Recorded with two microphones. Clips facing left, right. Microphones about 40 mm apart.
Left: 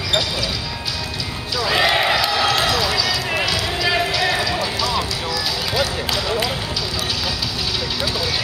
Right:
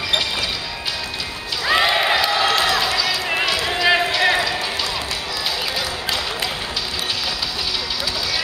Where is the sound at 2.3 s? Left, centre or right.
Right.